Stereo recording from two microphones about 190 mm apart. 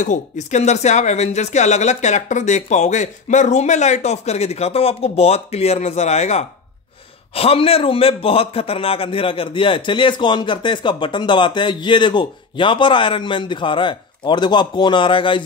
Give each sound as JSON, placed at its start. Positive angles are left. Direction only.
{"t": 0.0, "sound": "a man's voice", "side_deg": 40}